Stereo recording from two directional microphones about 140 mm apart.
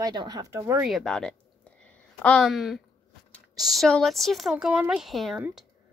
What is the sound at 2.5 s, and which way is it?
Speech, centre (ahead or behind).